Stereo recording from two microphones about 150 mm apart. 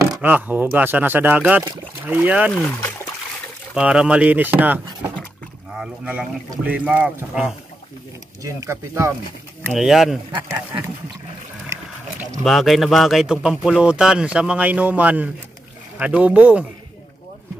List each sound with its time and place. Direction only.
0.0 s a sound: 20° right (ahead or behind)
0.3 s speech: 10° right (ahead or behind)
3.7 s speech: 5° right (ahead or behind)
8.4 s speech: 20° right (ahead or behind)
9.7 s a man's voice: centre (ahead or behind)
12.4 s a man's voice: centre (ahead or behind)